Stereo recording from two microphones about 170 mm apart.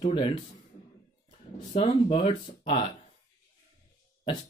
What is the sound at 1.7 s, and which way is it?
Speech, 35° left (ahead or behind).